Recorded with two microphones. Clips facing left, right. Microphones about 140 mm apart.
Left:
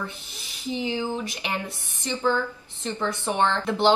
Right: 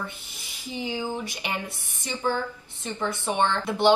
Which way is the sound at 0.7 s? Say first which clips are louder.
Left 3 dB; 15° right (ahead or behind).